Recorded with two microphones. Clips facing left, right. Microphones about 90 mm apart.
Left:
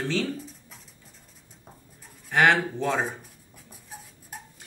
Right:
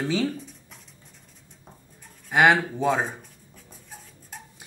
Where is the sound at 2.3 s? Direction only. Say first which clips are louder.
Right 2 dB; 10° right (ahead or behind).